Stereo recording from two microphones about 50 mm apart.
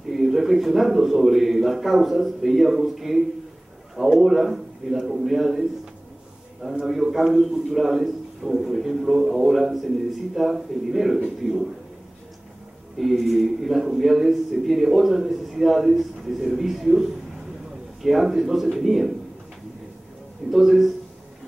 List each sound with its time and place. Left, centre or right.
0.1 s a man's voice: centre
6.6 s a man's voice: centre
13.0 s a man's voice: centre
18.0 s a man's voice: centre
20.5 s a man's voice: centre